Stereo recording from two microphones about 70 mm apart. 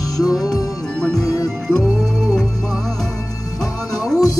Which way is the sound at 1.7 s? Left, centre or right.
Centre.